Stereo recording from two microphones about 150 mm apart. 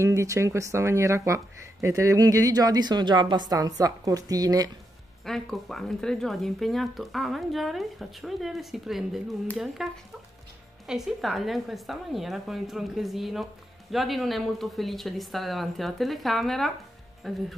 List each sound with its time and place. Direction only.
0.0 s speech: 20° right (ahead or behind)
5.2 s speech: centre (ahead or behind)